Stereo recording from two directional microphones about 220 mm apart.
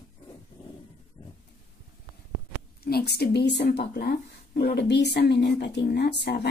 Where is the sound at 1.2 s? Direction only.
15° left (ahead or behind).